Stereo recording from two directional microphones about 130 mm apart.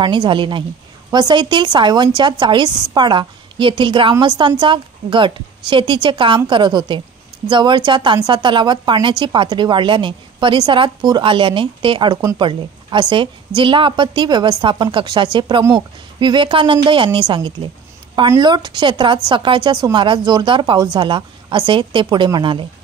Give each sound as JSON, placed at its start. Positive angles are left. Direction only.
{"t": 0.0, "sound": "a woman's voice", "side_deg": -35}